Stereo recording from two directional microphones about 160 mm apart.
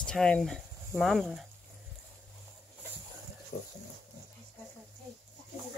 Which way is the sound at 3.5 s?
50° left (ahead or behind).